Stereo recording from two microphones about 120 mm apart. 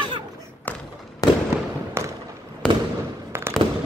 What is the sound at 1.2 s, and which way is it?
Fireworks, 30° left (ahead or behind).